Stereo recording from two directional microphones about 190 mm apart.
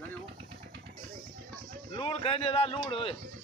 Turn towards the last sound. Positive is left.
turn(degrees=30)  # may be behind; listen again after turning